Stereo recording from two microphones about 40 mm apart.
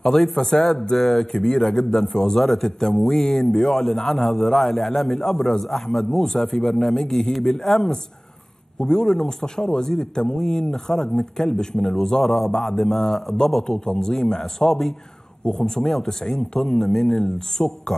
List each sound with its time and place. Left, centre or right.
0.0 s a man's voice: centre
9.0 s speech: centre